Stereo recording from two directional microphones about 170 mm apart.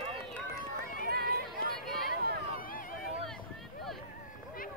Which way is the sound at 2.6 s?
55° left (ahead or behind).